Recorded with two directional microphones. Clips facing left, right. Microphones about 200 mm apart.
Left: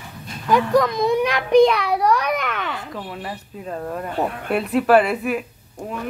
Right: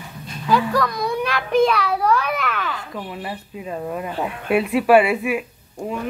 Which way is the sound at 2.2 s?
5° right (ahead or behind).